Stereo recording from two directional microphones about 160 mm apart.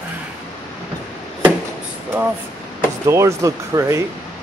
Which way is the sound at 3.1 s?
20° right (ahead or behind).